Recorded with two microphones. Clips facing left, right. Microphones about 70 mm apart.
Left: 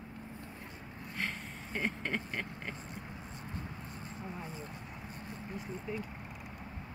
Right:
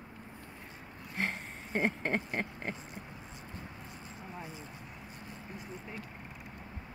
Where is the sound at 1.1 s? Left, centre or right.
Right.